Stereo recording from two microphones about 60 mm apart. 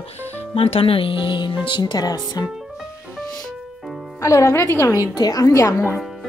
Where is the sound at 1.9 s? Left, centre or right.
Left.